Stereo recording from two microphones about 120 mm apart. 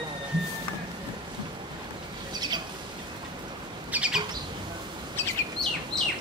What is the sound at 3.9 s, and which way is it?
Bird, 10° right (ahead or behind).